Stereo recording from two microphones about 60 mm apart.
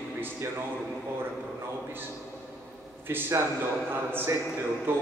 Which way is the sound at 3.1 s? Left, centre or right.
Right.